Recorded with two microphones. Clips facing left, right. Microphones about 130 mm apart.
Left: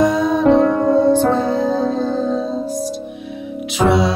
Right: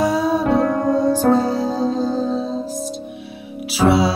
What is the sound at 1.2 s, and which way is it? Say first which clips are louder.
Music: even; 40° right (ahead or behind).